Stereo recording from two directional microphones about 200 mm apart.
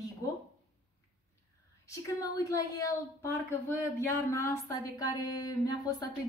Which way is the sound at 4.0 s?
10° left (ahead or behind).